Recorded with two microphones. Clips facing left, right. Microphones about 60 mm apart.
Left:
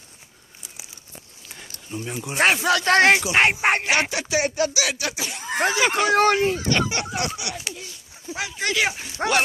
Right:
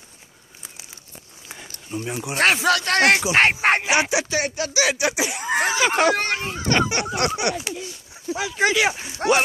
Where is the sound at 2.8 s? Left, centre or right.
Left.